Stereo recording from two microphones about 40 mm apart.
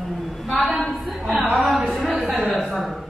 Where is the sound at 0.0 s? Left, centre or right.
Centre.